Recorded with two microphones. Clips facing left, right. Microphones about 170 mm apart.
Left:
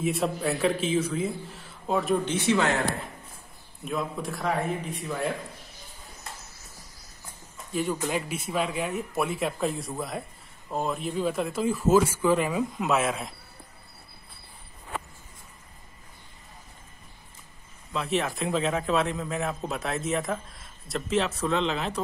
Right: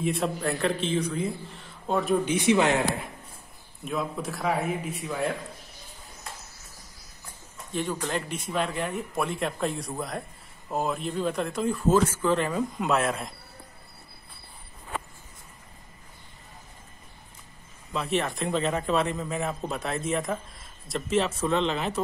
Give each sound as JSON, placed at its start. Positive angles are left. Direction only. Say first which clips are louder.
{"t": 0.0, "sound": "a man's voice", "louder": "left 1 dB", "side_deg": 5}
{"t": 2.2, "sound": "speech", "louder": "right 2 dB", "side_deg": -15}
{"t": 3.8, "sound": "a man's voice", "louder": "even", "side_deg": 0}
{"t": 7.7, "sound": "a man's voice", "louder": "left 2 dB", "side_deg": 5}
{"t": 17.9, "sound": "a man's voice", "louder": "even", "side_deg": 0}